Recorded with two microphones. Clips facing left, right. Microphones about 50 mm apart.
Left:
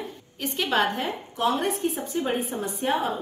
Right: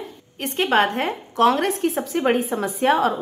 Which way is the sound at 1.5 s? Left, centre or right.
Right.